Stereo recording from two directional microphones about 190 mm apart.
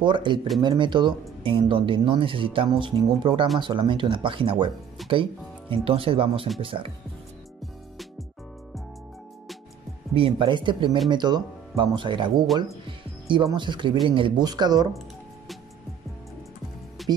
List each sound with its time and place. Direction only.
0.0 s speech: 25° right (ahead or behind)
10.1 s speech: 25° right (ahead or behind)
17.0 s music: centre (ahead or behind)